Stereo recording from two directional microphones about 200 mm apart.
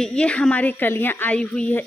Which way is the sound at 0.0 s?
5° left (ahead or behind).